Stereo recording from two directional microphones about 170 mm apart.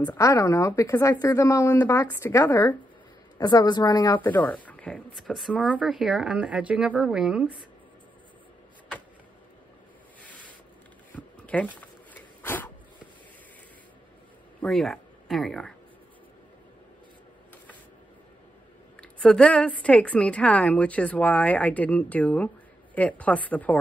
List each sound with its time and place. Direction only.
0.0 s a woman's voice: 15° left (ahead or behind)
3.3 s a woman's voice: 25° left (ahead or behind)
4.2 s a woman's voice: 10° left (ahead or behind); by 7.5 s 5° right (ahead or behind)
10.2 s a sound: 10° left (ahead or behind)
11.1 s dog: 10° left (ahead or behind)
14.6 s speech: 5° left (ahead or behind)
18.9 s a woman's voice: 5° left (ahead or behind)